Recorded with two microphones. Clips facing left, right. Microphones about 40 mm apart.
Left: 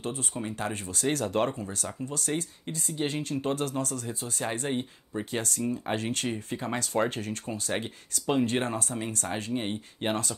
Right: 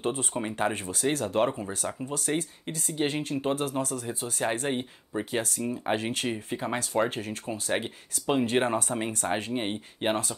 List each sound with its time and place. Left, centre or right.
0.0 s speech: right
0.4 s speech: right
1.0 s speech: centre
1.6 s speech: right
3.3 s speech: centre
4.6 s speech: centre
8.8 s speech: right